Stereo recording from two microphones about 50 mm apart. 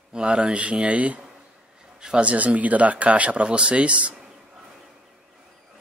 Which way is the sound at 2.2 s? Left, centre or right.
Right.